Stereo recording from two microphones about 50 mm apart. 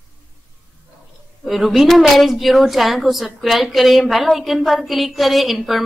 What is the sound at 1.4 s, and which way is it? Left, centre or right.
A woman's voice, centre.